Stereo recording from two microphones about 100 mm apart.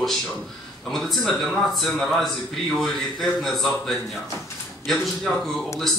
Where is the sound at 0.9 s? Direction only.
5° left (ahead or behind).